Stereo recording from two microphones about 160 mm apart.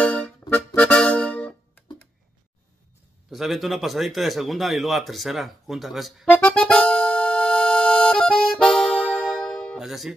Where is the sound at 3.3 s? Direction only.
Centre (ahead or behind).